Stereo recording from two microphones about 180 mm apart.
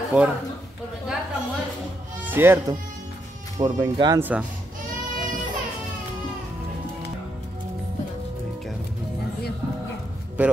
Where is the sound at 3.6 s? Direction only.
20° right (ahead or behind).